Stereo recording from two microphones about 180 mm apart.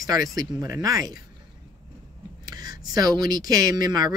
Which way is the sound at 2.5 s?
20° right (ahead or behind).